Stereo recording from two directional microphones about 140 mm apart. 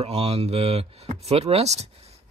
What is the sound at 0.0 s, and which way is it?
Speech, 45° right (ahead or behind).